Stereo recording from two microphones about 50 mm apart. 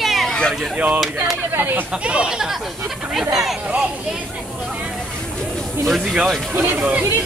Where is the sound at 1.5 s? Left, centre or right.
Right.